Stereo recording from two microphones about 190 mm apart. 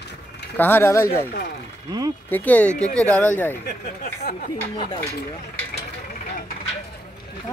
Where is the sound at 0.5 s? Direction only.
10° left (ahead or behind).